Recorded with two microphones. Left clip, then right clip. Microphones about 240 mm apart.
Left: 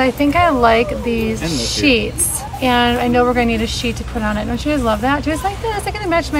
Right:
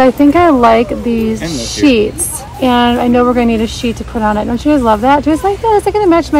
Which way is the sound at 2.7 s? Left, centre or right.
Left.